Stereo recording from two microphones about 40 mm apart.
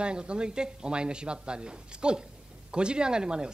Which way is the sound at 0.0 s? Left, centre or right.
Right.